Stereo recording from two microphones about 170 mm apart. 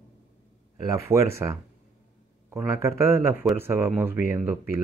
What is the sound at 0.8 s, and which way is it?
Speech, 15° right (ahead or behind).